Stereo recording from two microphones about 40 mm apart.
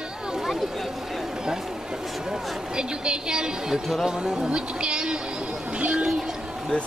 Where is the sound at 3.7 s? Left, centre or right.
Centre.